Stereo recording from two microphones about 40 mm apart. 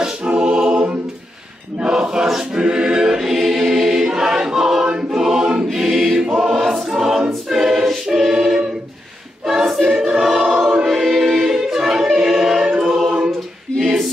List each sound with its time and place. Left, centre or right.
0.4 s a capella: right
1.8 s choir: right
5.9 s choir: centre
10.4 s choir: centre